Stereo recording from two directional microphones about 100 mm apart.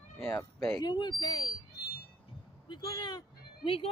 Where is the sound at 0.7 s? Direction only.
45° left (ahead or behind).